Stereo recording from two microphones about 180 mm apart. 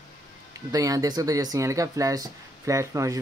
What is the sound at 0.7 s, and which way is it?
Speech, 20° right (ahead or behind).